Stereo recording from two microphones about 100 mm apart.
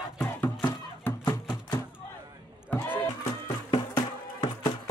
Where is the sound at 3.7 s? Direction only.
60° left (ahead or behind).